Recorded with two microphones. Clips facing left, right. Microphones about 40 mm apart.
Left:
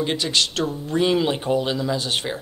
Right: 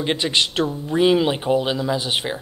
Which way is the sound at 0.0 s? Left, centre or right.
Right.